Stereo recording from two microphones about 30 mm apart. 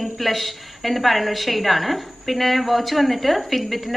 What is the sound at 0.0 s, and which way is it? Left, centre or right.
A woman's voice, centre.